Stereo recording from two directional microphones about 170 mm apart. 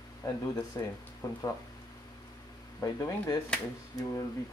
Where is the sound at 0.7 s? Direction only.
20° left (ahead or behind).